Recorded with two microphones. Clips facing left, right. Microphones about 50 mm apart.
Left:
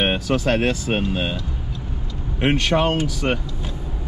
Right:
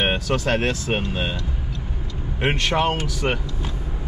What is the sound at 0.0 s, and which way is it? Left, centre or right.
Speech, centre.